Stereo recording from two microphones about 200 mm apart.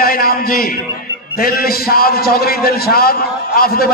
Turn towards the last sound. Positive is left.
turn(degrees=50)  # may be behind; listen again after turning